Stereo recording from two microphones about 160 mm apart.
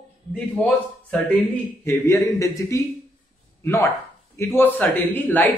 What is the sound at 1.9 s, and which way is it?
A man's voice, 20° left (ahead or behind).